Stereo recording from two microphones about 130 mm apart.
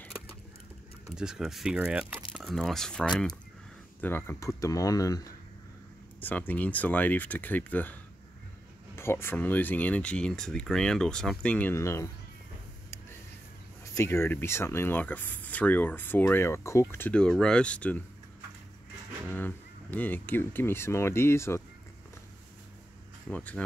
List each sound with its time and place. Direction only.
1.1 s speech: 5° right (ahead or behind)
4.0 s speech: 15° left (ahead or behind)
6.2 s speech: 15° left (ahead or behind)
11.7 s speech: 20° left (ahead or behind)
13.9 s speech: 20° left (ahead or behind)
17.1 s speech: 5° left (ahead or behind)
19.3 s speech: 15° left (ahead or behind)
23.2 s speech: 10° left (ahead or behind)